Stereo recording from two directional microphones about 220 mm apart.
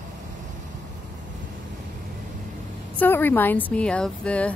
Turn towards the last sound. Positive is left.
turn(degrees=5)  # may be behind; listen again after turning